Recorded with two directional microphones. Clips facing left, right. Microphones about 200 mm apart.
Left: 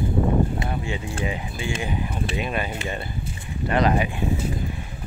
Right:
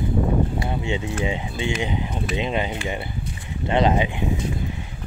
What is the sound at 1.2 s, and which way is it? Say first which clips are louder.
Speech: right 3 dB; 25° right (ahead or behind).